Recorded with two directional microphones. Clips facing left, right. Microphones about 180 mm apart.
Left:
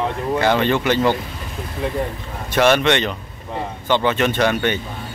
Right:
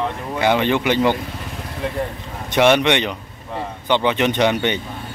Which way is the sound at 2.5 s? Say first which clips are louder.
Right 1 dB; 15° right (ahead or behind).